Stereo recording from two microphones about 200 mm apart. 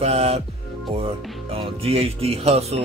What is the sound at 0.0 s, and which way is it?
Speech, 30° right (ahead or behind).